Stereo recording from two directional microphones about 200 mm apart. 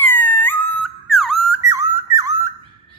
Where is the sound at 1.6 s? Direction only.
15° right (ahead or behind).